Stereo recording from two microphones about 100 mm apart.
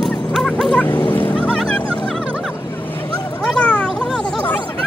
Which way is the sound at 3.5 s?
15° left (ahead or behind).